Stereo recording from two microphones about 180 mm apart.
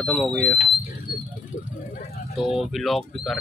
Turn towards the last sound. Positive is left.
turn(degrees=0)  # may be behind; listen again after turning